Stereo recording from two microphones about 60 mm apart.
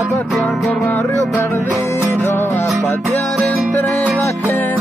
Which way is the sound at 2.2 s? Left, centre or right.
Left.